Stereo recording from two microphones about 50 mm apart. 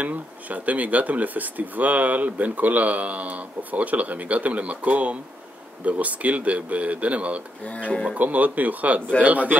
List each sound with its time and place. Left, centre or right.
0.0 s speech: right
7.6 s speech: left
8.2 s speech: right